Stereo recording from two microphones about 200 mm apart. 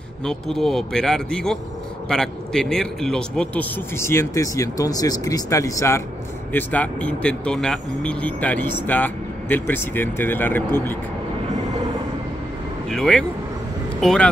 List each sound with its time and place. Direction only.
0.2 s a man's voice: centre (ahead or behind)
12.9 s a man's voice: 5° left (ahead or behind)